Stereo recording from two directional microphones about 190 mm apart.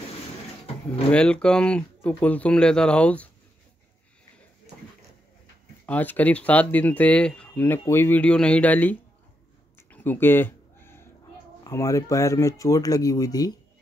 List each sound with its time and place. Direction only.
1.1 s speech: 5° left (ahead or behind)
5.9 s speech: 10° left (ahead or behind)
9.8 s a sound: 10° left (ahead or behind)
11.6 s speech: 15° left (ahead or behind)